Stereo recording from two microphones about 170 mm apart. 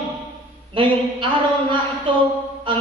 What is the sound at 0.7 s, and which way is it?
Speech, 30° right (ahead or behind).